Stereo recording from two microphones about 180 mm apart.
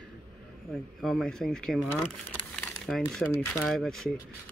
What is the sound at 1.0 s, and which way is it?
Speech, centre (ahead or behind).